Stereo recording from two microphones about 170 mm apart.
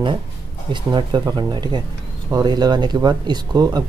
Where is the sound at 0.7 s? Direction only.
25° right (ahead or behind).